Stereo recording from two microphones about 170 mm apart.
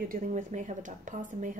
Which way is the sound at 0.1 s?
45° right (ahead or behind).